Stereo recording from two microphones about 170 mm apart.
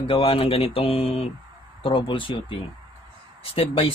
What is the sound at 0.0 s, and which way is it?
A man's voice, 35° left (ahead or behind).